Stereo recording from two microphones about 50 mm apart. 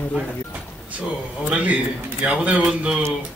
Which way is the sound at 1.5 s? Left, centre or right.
Right.